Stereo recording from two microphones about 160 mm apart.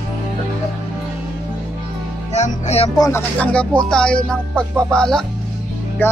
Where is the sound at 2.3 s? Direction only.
45° left (ahead or behind).